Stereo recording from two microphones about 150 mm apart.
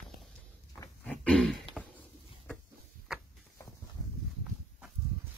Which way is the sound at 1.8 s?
10° right (ahead or behind).